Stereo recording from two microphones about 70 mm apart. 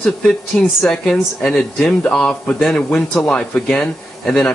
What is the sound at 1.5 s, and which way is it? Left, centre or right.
Speech, centre.